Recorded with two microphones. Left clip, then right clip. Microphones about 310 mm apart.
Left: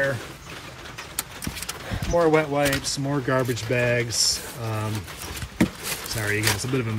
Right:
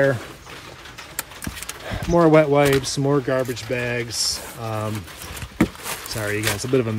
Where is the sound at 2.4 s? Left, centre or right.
Right.